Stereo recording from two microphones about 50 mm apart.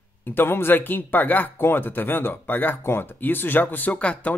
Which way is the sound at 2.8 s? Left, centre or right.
Left.